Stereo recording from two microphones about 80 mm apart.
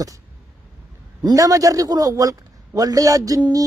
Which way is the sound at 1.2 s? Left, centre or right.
Right.